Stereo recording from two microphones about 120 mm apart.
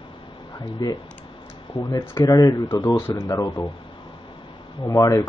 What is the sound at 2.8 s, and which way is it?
Speech, 20° left (ahead or behind).